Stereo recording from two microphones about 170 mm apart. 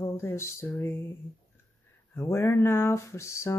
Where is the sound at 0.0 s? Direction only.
15° left (ahead or behind).